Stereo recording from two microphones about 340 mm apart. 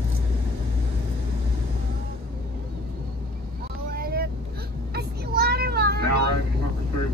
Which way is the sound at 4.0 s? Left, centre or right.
Right.